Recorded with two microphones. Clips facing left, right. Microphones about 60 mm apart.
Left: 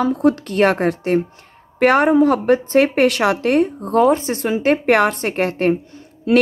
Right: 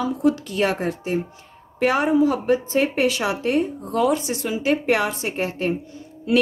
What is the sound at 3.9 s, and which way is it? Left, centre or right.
A woman's voice, left.